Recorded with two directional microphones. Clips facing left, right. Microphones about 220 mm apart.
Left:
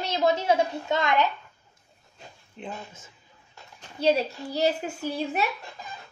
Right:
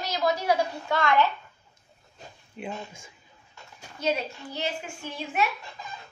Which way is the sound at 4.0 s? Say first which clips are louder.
Left 5 dB; 35° left (ahead or behind).